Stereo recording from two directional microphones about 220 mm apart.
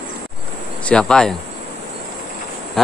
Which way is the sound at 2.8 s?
Centre (ahead or behind).